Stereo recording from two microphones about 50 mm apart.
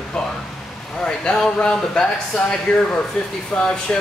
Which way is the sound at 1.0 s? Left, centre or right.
Centre.